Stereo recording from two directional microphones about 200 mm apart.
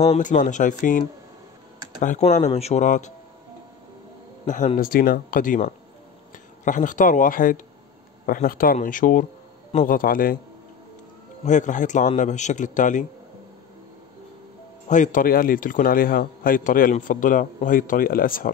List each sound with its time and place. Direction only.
0.0 s a man's voice: 35° left (ahead or behind)
4.5 s a man's voice: 40° left (ahead or behind)
11.4 s a man's voice: 40° left (ahead or behind)
14.9 s a man's voice: 40° left (ahead or behind)